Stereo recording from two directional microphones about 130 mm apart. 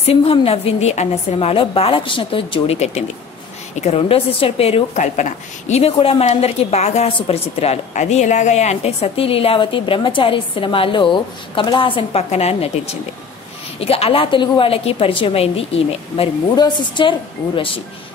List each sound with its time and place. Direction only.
0.0 s a woman's voice: 50° left (ahead or behind)
16.5 s a woman's voice: 35° left (ahead or behind)